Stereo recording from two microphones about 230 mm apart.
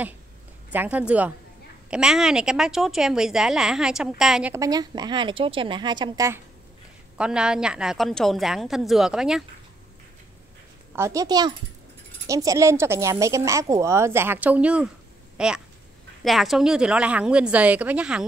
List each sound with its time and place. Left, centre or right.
0.7 s a woman's voice: centre
7.2 s a woman's voice: centre
11.0 s a woman's voice: centre